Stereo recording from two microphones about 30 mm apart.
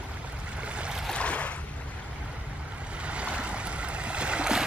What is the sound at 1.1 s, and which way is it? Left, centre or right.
Boat, left.